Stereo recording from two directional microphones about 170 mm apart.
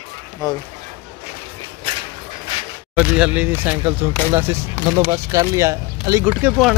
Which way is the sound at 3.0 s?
5° right (ahead or behind).